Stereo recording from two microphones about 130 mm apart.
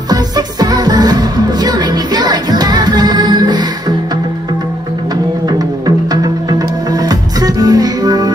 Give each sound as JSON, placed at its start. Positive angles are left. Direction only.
{"t": 0.1, "sound": "music", "side_deg": -30}
{"t": 5.5, "sound": "music", "side_deg": -30}